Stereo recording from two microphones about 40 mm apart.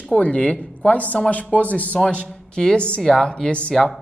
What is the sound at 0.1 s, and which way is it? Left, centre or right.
Speech, left.